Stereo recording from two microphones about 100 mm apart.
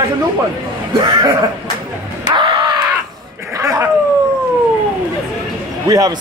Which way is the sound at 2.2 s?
55° right (ahead or behind).